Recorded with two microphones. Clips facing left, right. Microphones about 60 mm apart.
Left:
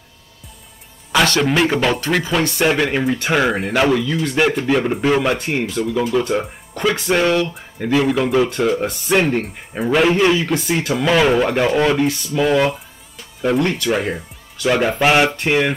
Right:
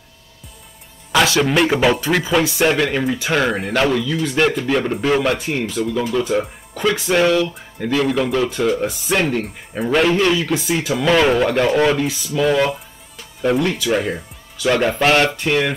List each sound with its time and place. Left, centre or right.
1.1 s speech: centre
10.2 s speech: centre
10.5 s speech: centre